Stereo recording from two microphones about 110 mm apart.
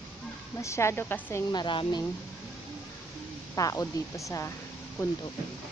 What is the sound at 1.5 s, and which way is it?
Speech, 45° left (ahead or behind).